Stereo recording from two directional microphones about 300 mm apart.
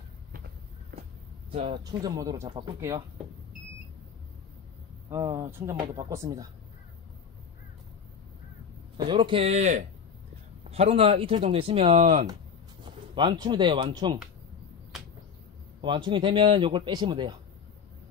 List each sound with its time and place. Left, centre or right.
1.5 s speech: centre
5.1 s speech: centre
8.9 s speech: centre
15.8 s speech: centre